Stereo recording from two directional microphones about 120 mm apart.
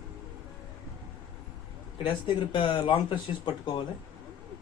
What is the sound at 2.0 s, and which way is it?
Speech, 45° left (ahead or behind).